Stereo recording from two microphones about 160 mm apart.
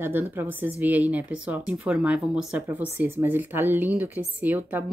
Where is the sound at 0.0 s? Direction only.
15° right (ahead or behind).